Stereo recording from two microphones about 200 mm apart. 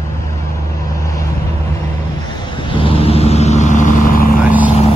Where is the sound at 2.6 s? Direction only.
25° left (ahead or behind); by 4.3 s 45° left (ahead or behind).